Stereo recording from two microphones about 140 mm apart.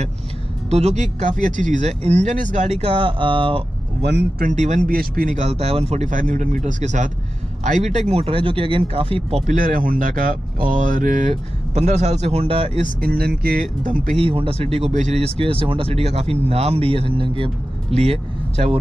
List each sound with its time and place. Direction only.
0.7 s speech: 50° right (ahead or behind)
4.4 s speech: 60° right (ahead or behind)
4.9 s speech: 85° right; by 8.0 s 60° right (ahead or behind)
8.1 s speech: 45° right (ahead or behind)
9.5 s speech: 80° right; by 12.8 s 45° right (ahead or behind)
12.8 s speech: 90° right; by 14.1 s 70° right (ahead or behind)
14.1 s speech: 40° right (ahead or behind)